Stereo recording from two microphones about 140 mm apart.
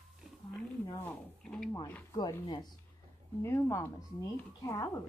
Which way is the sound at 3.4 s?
20° left (ahead or behind).